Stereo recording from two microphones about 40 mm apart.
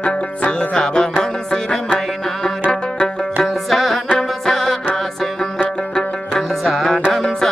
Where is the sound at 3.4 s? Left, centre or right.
Centre.